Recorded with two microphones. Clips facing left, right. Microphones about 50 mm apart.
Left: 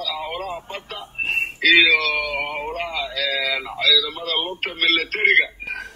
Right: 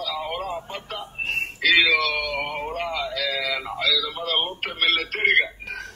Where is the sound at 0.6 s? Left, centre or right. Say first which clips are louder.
Left 1 dB; left.